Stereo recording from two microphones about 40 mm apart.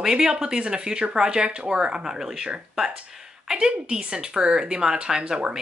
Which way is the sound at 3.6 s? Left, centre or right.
Right.